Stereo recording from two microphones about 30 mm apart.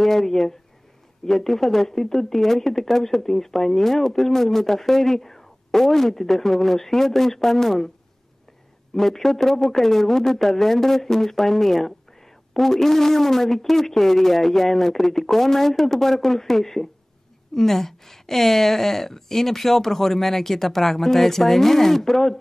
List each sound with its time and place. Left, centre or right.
0.0 s speech: centre
8.9 s speech: centre